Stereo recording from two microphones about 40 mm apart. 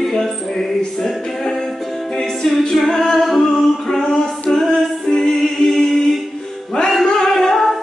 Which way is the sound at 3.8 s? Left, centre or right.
Centre.